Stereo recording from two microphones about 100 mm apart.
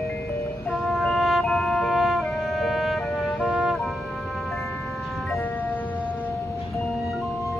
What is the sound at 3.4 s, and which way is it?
Music, 10° right (ahead or behind).